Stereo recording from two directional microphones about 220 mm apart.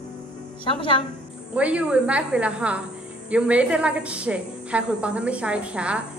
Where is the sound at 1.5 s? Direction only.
5° right (ahead or behind).